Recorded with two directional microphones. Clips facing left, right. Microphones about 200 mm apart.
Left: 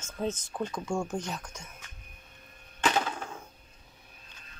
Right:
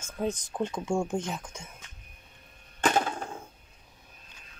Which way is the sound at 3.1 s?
30° right (ahead or behind).